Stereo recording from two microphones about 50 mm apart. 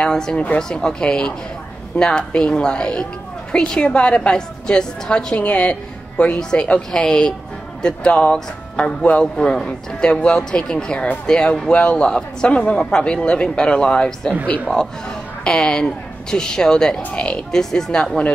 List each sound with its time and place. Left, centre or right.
0.0 s a woman's voice: centre
17.0 s a woman's voice: left
17.5 s speech: centre